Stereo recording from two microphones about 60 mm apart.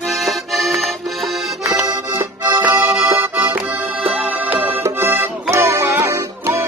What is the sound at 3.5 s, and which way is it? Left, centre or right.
Music, right.